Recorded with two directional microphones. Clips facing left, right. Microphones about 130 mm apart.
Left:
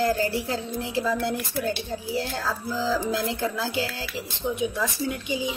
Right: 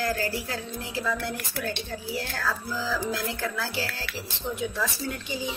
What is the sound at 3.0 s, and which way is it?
Speech, 20° left (ahead or behind).